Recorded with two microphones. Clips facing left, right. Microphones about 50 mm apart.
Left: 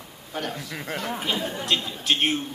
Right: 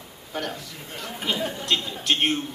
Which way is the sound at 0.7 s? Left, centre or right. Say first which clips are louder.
Left 6 dB; left.